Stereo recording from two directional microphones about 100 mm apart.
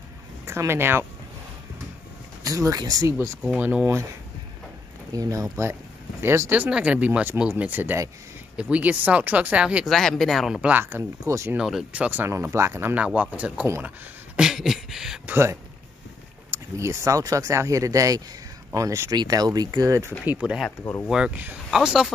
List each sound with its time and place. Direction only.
0.5 s speech: 25° right (ahead or behind)
2.4 s speech: 35° right (ahead or behind)
3.5 s speech: 20° right (ahead or behind)
5.1 s speech: 35° right (ahead or behind)
6.5 s speech: 15° right (ahead or behind)
9.8 s speech: 5° left (ahead or behind)
10.6 s speech: 20° right (ahead or behind)
11.5 s speech: 5° right (ahead or behind); by 12.9 s 25° right (ahead or behind)
12.9 s speech: 15° right (ahead or behind)
13.8 s a sound: 10° right (ahead or behind)
15.2 s speech: 25° right (ahead or behind)
20.3 s speech: 10° right (ahead or behind)